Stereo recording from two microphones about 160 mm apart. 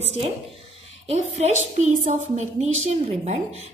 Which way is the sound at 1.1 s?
40° right (ahead or behind).